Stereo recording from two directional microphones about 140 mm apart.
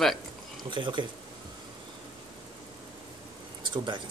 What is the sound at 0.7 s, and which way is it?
Speech, 35° right (ahead or behind).